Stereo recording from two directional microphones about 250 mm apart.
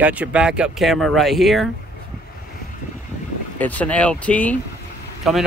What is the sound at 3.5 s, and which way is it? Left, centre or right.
Speech, centre.